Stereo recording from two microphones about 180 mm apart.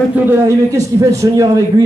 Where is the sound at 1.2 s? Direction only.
20° right (ahead or behind).